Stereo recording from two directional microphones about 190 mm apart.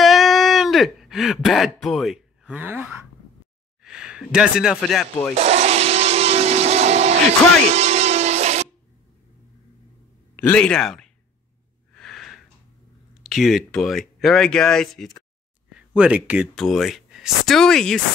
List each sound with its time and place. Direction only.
0.0 s a sound: centre (ahead or behind)
3.8 s speech: 5° right (ahead or behind)
5.3 s blender: 35° right (ahead or behind)
10.3 s speech: 10° left (ahead or behind)
11.9 s a sound: centre (ahead or behind)
13.2 s speech: centre (ahead or behind)